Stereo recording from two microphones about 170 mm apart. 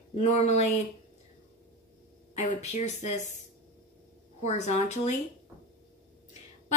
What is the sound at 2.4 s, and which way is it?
Speech, 40° left (ahead or behind).